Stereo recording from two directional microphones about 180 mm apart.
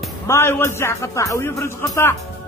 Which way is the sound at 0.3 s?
15° left (ahead or behind).